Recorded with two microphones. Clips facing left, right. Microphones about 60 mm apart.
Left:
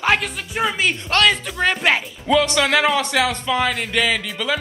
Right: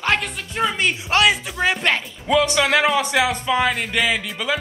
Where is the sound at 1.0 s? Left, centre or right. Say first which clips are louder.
Even; centre.